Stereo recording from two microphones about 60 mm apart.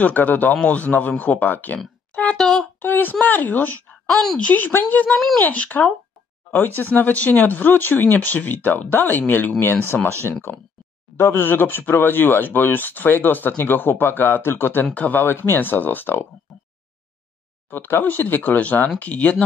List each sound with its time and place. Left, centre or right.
0.0 s a man's voice: left
2.3 s a sound: centre
2.8 s a woman's voice: left
17.6 s a man's voice: left; by 19.4 s centre